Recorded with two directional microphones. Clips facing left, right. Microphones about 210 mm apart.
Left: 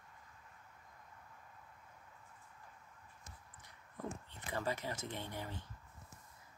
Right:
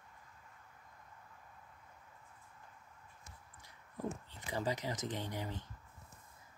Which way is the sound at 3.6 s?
10° right (ahead or behind).